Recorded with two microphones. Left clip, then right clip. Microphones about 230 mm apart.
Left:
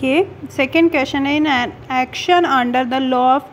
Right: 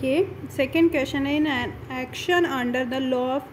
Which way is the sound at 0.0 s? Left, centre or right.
Left.